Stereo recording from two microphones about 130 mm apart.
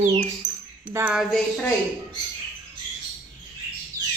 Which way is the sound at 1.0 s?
25° right (ahead or behind).